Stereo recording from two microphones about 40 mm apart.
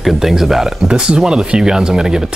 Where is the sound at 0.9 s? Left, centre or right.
Centre.